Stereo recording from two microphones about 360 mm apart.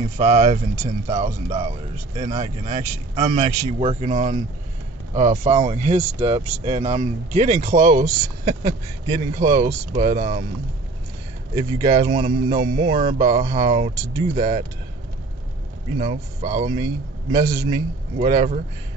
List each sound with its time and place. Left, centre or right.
0.2 s speech: centre
11.5 s speech: centre
16.0 s speech: centre
18.2 s speech: centre